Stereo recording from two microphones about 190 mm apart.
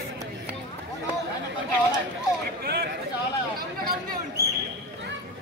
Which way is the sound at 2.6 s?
60° right (ahead or behind).